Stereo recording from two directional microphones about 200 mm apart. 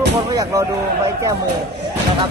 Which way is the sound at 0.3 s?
20° right (ahead or behind).